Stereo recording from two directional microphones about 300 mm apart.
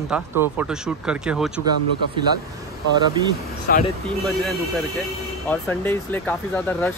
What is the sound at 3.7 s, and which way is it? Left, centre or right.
Speech, left.